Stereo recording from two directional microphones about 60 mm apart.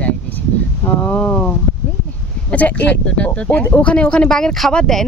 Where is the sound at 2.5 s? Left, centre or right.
Left.